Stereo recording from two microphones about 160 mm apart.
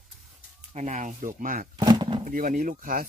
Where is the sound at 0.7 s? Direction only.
45° right (ahead or behind).